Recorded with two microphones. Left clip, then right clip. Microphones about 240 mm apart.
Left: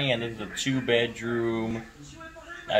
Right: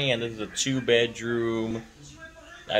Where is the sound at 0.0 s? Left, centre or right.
Centre.